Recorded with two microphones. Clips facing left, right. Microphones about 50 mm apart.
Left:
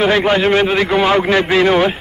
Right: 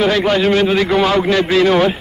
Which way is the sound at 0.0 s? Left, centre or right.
Left.